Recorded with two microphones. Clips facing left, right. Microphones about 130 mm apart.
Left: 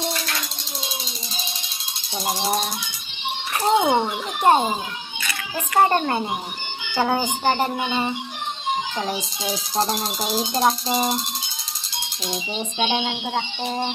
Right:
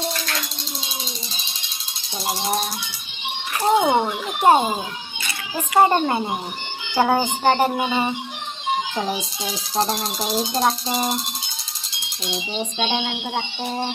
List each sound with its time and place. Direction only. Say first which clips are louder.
3.6 s a child's voice: right 1 dB; 10° right (ahead or behind)
5.8 s a child's voice: right 2 dB; 15° right (ahead or behind)
9.8 s speech: right 2 dB; centre (ahead or behind)
12.7 s speech: left 3 dB; 10° left (ahead or behind)